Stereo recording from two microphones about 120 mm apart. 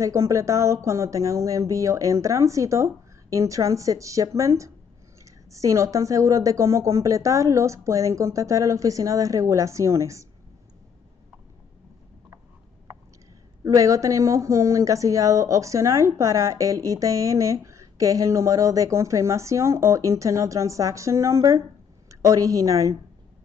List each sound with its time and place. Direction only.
0.0 s speech: 25° right (ahead or behind)
13.7 s speech: 25° right (ahead or behind)